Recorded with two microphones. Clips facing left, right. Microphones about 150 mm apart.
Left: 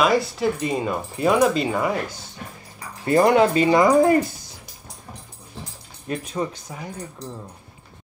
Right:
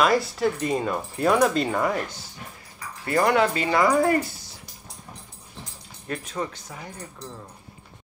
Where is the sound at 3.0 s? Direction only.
25° left (ahead or behind).